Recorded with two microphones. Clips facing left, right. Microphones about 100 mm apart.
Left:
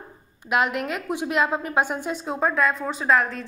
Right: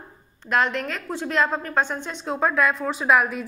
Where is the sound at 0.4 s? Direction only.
10° left (ahead or behind).